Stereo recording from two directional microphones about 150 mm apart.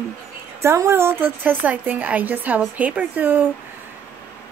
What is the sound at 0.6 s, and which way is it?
Speech, 15° right (ahead or behind).